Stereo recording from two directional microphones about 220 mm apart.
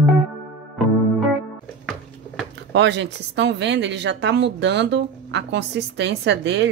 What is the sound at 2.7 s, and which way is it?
A woman's voice, 55° right (ahead or behind).